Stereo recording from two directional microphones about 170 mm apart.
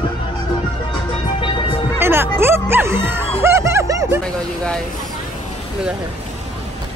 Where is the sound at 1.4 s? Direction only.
30° left (ahead or behind).